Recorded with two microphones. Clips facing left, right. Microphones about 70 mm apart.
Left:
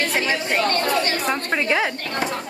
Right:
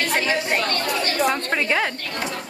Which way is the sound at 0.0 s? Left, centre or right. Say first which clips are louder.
Even; centre.